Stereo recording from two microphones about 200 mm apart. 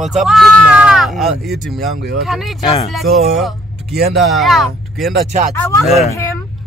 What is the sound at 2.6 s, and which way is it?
Speech, 30° left (ahead or behind).